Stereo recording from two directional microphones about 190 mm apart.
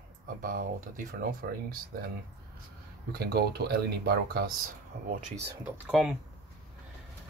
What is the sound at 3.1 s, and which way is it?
Speech, 55° right (ahead or behind).